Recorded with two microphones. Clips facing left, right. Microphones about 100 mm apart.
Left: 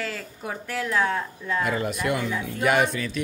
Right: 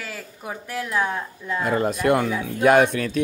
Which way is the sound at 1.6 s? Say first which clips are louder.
Right 6 dB; 40° right (ahead or behind).